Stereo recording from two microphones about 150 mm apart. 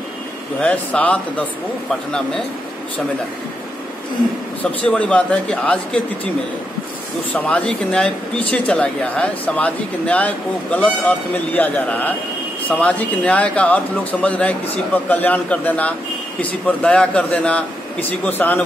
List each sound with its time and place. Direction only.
0.6 s speech: 10° left (ahead or behind)
4.8 s speech: 10° left (ahead or behind)
7.3 s speech: 10° left (ahead or behind)